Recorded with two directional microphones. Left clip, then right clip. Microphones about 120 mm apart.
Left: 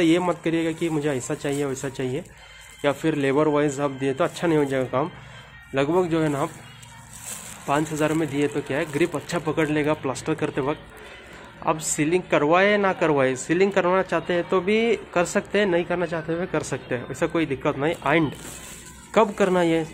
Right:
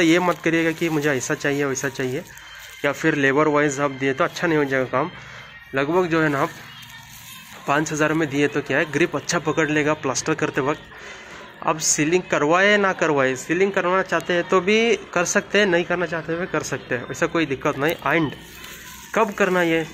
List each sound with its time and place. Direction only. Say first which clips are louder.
0.0 s speech: right 3 dB; centre (ahead or behind)
7.6 s speech: right 3 dB; 5° left (ahead or behind)
11.9 s speech: right 1 dB; 5° left (ahead or behind)
13.5 s speech: even; 25° left (ahead or behind); by 16.1 s 5° left (ahead or behind)
16.1 s speech: right 2 dB; 20° left (ahead or behind)
19.3 s speech: right 1 dB; 20° left (ahead or behind)